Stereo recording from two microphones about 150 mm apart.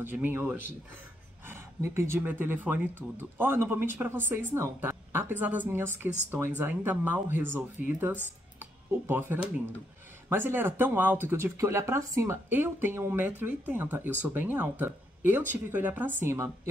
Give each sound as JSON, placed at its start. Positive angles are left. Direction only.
{"t": 0.0, "sound": "speech", "side_deg": -15}